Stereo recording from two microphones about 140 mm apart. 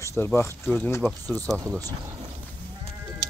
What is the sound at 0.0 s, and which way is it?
Speech, 15° left (ahead or behind).